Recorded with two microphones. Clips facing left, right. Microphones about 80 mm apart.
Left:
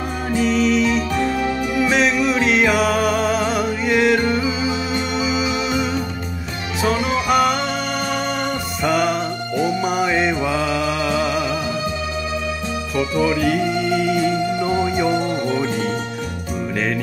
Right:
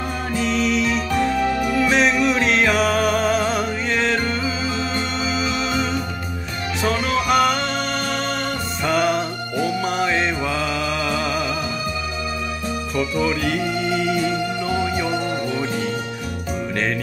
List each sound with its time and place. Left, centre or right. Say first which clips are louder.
0.3 s music: left 4 dB; centre
1.4 s music: right 1 dB; right
1.9 s music: left 1 dB; centre
8.8 s music: left 1 dB; centre
13.2 s music: left 6 dB; centre
15.1 s music: left 3 dB; left